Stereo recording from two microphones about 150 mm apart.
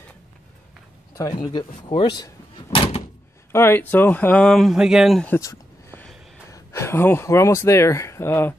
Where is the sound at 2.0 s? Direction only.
30° left (ahead or behind).